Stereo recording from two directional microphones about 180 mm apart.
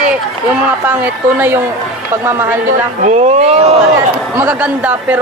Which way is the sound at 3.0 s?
40° right (ahead or behind).